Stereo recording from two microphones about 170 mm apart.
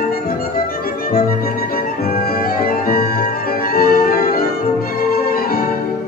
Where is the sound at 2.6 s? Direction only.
60° left (ahead or behind).